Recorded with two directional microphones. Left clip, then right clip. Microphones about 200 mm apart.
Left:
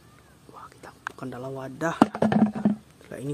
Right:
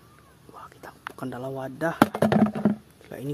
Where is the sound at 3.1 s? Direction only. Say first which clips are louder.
Even; centre (ahead or behind).